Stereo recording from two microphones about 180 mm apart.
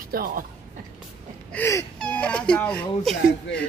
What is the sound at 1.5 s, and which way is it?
Speech, 15° left (ahead or behind).